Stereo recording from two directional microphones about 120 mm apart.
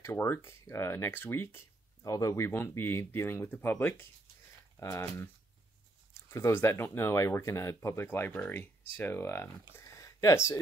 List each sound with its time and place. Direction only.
0.0 s speech: 20° left (ahead or behind)
6.3 s speech: 20° left (ahead or behind)